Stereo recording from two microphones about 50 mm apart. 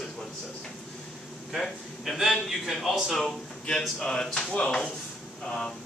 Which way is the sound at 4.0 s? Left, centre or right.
Centre.